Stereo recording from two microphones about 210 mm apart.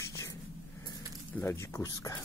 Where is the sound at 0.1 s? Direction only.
15° left (ahead or behind).